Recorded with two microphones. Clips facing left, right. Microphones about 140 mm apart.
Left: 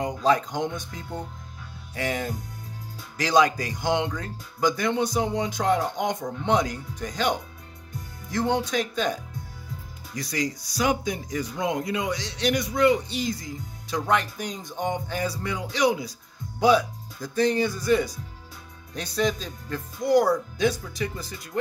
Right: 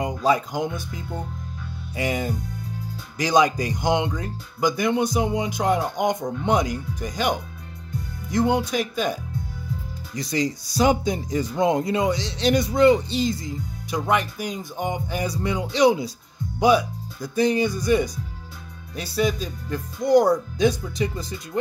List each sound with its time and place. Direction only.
0.0 s speech: 10° right (ahead or behind)
10.1 s speech: 25° right (ahead or behind)
13.8 s speech: 10° right (ahead or behind)
16.5 s speech: 10° right (ahead or behind)
20.0 s speech: 20° right (ahead or behind)